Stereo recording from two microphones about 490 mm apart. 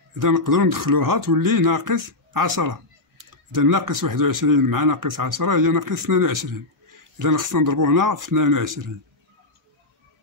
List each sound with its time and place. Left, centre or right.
0.2 s speech: right